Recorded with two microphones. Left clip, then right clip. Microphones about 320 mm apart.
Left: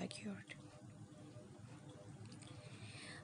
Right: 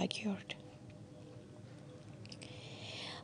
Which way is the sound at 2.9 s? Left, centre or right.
Right.